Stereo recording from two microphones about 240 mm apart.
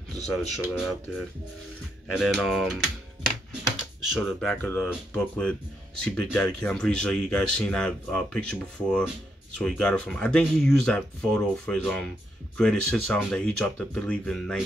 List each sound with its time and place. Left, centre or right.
0.3 s speech: centre